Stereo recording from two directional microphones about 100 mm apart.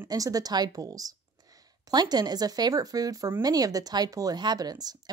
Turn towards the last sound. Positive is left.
turn(degrees=-40)  # may be behind; listen again after turning